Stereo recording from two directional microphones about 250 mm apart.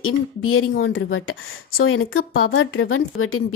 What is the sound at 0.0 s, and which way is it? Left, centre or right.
A woman's voice, left.